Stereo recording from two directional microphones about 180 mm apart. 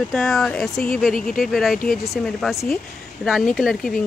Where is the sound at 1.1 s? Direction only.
50° left (ahead or behind).